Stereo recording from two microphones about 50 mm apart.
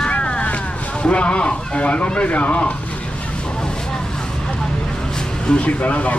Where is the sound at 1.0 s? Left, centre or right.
Left.